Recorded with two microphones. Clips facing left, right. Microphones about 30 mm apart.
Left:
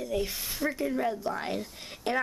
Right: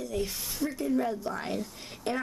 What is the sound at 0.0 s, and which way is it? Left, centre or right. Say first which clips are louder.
Speech: left 2 dB; centre.